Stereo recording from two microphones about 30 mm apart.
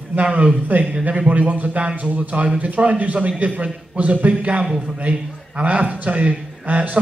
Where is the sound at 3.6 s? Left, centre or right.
Right.